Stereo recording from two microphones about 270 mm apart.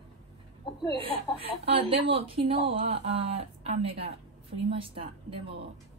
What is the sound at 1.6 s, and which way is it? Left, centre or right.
Speech, right.